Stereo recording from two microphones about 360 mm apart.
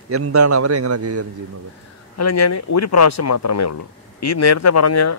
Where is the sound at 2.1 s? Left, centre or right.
Left.